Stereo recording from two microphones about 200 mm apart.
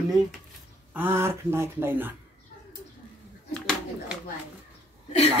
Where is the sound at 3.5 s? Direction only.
5° left (ahead or behind).